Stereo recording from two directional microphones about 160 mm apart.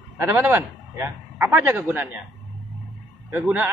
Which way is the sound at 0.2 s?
15° right (ahead or behind).